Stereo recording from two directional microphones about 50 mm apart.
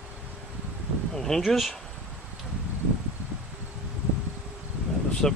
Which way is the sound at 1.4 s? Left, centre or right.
Centre.